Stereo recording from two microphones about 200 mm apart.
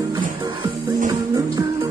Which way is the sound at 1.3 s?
15° right (ahead or behind).